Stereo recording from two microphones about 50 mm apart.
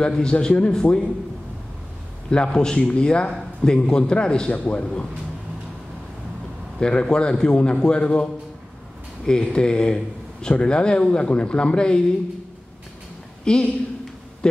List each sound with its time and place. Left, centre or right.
0.0 s a man's voice: centre
2.2 s a man's voice: centre
6.8 s a man's voice: centre
13.4 s a sound: centre
14.4 s a man's voice: centre